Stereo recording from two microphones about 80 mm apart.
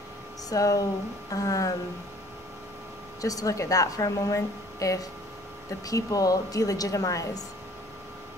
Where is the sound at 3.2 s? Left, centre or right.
Left.